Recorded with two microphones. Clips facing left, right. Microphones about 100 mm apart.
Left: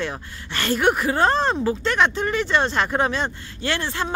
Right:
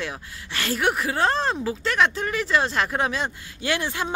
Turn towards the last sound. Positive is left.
turn(degrees=-10)  # may be behind; listen again after turning